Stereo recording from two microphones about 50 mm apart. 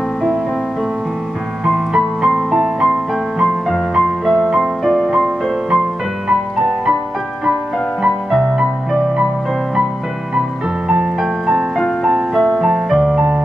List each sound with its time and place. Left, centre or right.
1.6 s music: centre
2.6 s music: centre
3.3 s music: centre
6.3 s music: centre
8.0 s music: centre
11.1 s music: centre